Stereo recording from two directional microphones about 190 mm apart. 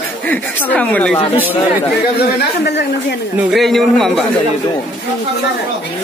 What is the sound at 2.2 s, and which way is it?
Speech, 60° left (ahead or behind).